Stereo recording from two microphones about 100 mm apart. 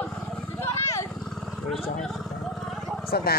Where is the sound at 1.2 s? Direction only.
5° left (ahead or behind).